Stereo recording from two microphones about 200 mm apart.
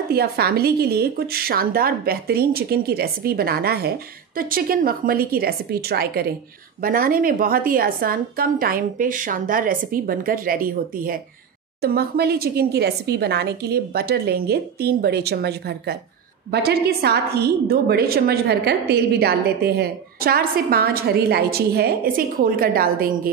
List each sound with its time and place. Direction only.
0.1 s a woman's voice: 50° right (ahead or behind)